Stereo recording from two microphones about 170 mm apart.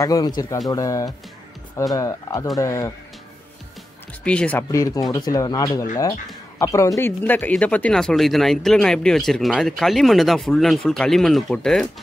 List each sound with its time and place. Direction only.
0.0 s speech: 20° left (ahead or behind)
4.2 s speech: 5° left (ahead or behind)
4.6 s speech: 20° left (ahead or behind)